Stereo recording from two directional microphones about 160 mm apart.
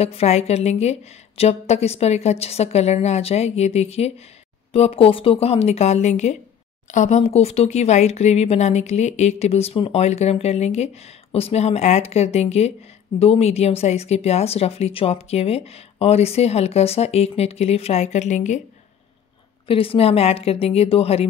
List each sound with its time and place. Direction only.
0.0 s speech: 40° left (ahead or behind)
19.7 s speech: 35° left (ahead or behind)